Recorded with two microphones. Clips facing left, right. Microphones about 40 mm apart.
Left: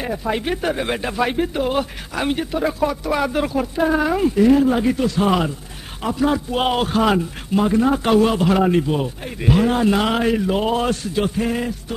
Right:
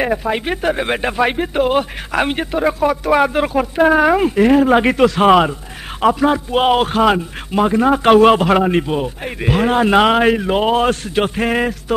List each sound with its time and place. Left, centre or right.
0.2 s speech: right
3.7 s a man's voice: right
6.2 s speech: right
7.5 s speech: right
8.6 s speech: right
9.8 s speech: right
11.1 s speech: right